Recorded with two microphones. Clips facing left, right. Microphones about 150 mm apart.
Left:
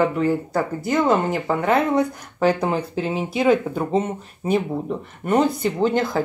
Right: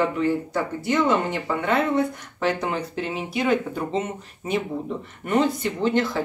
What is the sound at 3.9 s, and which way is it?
Speech, 35° left (ahead or behind).